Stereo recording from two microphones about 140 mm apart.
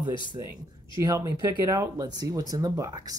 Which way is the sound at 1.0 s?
25° right (ahead or behind).